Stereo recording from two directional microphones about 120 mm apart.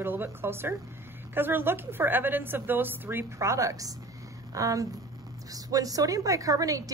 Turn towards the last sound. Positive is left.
turn(degrees=-30)  # may be behind; listen again after turning